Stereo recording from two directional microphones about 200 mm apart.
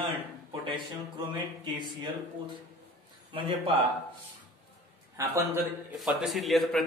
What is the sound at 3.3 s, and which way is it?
Speech, 25° right (ahead or behind).